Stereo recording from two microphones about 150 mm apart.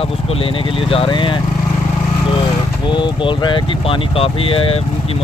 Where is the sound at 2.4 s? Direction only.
30° left (ahead or behind).